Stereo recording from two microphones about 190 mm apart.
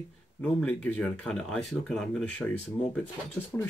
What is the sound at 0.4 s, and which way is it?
Speech, 5° left (ahead or behind).